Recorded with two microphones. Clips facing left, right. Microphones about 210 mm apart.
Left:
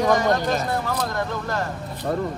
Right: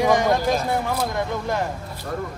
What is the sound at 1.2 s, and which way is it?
Speech, 15° right (ahead or behind).